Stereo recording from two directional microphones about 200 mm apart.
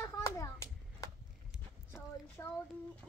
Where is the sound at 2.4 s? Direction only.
10° left (ahead or behind).